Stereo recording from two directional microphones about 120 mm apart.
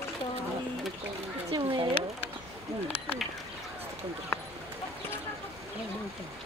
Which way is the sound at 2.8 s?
55° left (ahead or behind).